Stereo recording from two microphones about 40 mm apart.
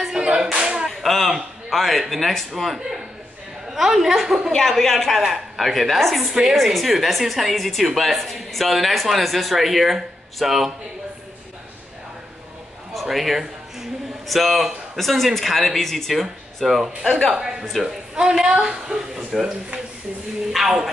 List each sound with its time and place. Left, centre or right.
0.0 s clapping: centre
0.8 s whip: centre
1.7 s a woman's voice: centre
4.5 s a woman's voice: centre
12.9 s speech: centre
17.3 s a woman's voice: centre
20.5 s a woman's voice: centre